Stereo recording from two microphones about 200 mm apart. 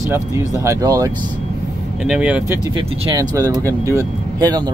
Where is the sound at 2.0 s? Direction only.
5° right (ahead or behind).